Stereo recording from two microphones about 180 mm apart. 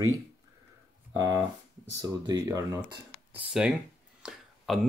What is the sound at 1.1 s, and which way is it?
Speech, 20° right (ahead or behind).